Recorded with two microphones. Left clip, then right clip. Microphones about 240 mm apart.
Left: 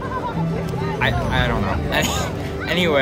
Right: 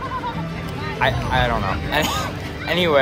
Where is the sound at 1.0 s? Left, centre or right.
Centre.